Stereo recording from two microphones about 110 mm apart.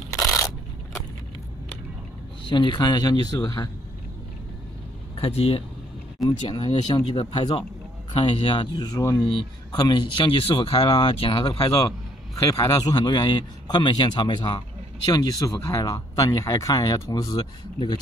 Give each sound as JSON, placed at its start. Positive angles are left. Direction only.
{"t": 0.1, "sound": "scrape", "side_deg": 30}
{"t": 2.4, "sound": "speech", "side_deg": 45}
{"t": 5.1, "sound": "speech", "side_deg": 60}
{"t": 6.6, "sound": "speech", "side_deg": 50}
{"t": 12.4, "sound": "speech", "side_deg": 30}